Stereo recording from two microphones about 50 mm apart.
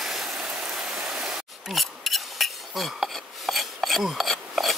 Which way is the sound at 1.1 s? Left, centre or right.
Centre.